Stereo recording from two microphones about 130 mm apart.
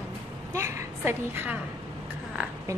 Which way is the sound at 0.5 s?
20° right (ahead or behind).